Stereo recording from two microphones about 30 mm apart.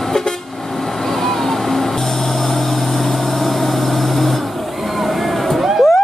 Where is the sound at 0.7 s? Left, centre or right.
Centre.